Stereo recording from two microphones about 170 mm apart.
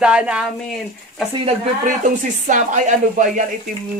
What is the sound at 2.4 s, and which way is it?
Speech, 45° right (ahead or behind).